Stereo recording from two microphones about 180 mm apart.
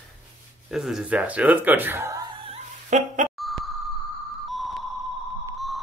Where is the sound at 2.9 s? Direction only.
45° right (ahead or behind).